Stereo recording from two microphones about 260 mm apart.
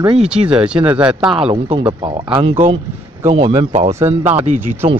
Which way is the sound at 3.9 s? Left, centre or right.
Centre.